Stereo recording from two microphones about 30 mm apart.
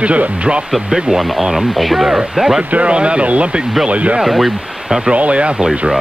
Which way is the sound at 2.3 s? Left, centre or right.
Centre.